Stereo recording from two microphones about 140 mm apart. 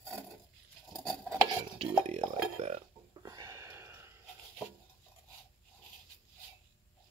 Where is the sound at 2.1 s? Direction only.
55° right (ahead or behind).